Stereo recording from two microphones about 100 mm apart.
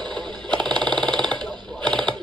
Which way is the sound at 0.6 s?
5° left (ahead or behind).